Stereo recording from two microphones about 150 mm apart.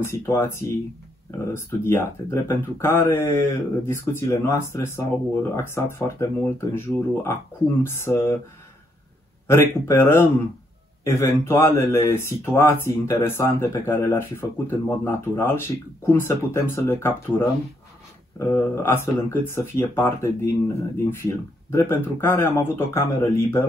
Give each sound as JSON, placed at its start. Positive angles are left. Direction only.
{"t": 0.0, "sound": "speech", "side_deg": 15}
{"t": 7.8, "sound": "speech", "side_deg": 15}
{"t": 9.5, "sound": "speech", "side_deg": 15}